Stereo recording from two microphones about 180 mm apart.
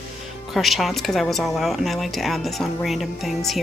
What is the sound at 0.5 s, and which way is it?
Speech, centre (ahead or behind).